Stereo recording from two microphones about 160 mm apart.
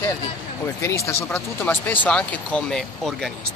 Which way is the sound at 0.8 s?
20° left (ahead or behind).